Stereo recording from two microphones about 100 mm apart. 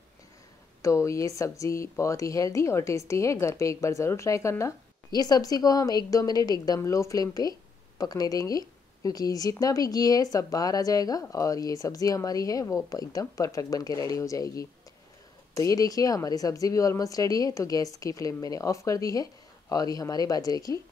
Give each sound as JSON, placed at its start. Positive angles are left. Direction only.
{"t": 0.8, "sound": "speech", "side_deg": 30}
{"t": 5.1, "sound": "speech", "side_deg": 40}